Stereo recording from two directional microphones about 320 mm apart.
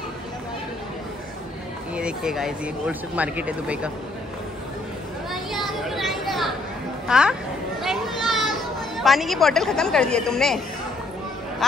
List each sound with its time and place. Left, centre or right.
2.0 s speech: centre
5.3 s a sound: centre
7.1 s speech: centre
7.8 s children playing: centre
8.9 s speech: centre